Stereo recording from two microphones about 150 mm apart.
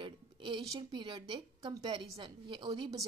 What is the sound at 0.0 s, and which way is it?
A woman's voice, 35° right (ahead or behind).